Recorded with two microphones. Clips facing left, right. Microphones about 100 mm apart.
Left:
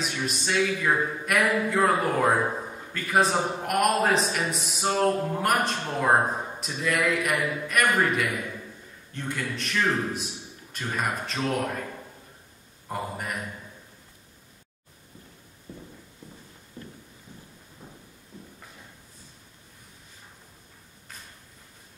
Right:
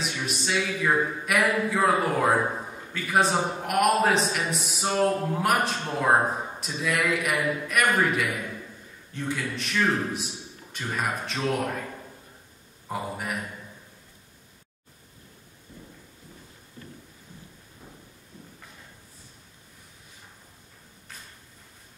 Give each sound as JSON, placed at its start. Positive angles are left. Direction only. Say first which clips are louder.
{"t": 0.0, "sound": "a man's voice", "louder": "left 1 dB", "side_deg": 0}
{"t": 12.8, "sound": "a man's voice", "louder": "right 1 dB", "side_deg": 0}